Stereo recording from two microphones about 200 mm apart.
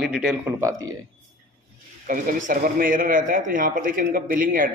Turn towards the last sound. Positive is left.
turn(degrees=-45)  # may be behind; listen again after turning